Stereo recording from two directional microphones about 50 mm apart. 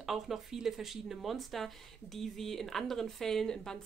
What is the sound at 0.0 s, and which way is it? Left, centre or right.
Speech, centre.